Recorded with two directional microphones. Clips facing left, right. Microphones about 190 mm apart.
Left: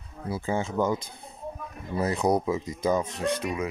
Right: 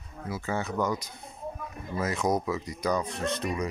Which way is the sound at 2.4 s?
20° left (ahead or behind).